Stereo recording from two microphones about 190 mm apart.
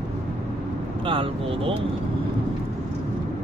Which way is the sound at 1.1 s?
30° right (ahead or behind).